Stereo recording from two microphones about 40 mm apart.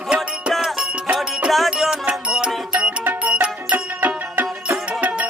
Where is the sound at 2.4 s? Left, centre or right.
Right.